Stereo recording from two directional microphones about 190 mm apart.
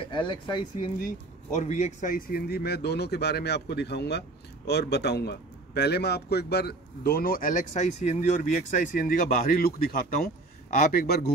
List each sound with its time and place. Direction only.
0.0 s speech: 25° left (ahead or behind)
1.0 s a man's voice: 40° left (ahead or behind); by 11.3 s 55° left (ahead or behind)